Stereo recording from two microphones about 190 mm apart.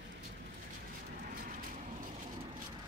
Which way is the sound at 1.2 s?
45° right (ahead or behind).